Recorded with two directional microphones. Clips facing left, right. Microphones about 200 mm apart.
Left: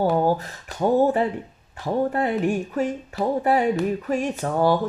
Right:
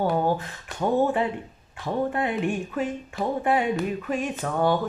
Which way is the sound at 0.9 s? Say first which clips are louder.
Left 3 dB; 40° left (ahead or behind).